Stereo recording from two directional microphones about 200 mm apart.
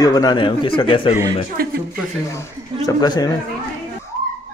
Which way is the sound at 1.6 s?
45° right (ahead or behind).